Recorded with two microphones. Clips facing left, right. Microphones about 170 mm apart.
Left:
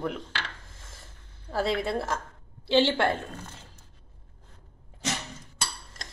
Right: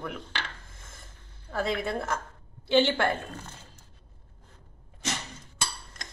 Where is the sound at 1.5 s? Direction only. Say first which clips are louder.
Left 2 dB; 30° left (ahead or behind).